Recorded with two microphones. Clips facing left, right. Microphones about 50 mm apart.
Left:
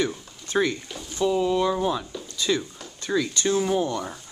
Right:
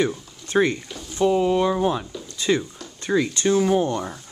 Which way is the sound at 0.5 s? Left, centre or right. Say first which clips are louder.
Right 4 dB; right.